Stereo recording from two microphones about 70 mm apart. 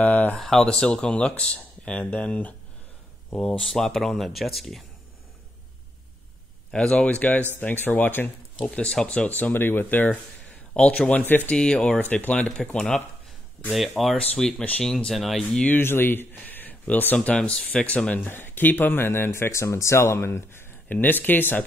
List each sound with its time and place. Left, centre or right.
0.0 s speech: left
0.4 s speech: centre
6.7 s speech: centre; by 8.3 s left
8.5 s speech: centre
10.7 s speech: centre
12.0 s speech: left
13.7 s speech: centre
14.1 s speech: centre
15.8 s speech: left
17.4 s speech: centre; by 21.6 s left